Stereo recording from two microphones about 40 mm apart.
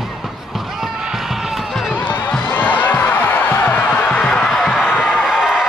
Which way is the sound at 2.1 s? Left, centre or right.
Left.